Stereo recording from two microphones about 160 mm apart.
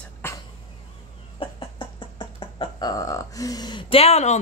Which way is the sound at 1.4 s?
35° left (ahead or behind).